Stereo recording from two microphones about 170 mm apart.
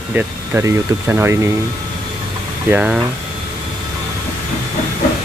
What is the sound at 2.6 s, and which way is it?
Speech, 10° right (ahead or behind).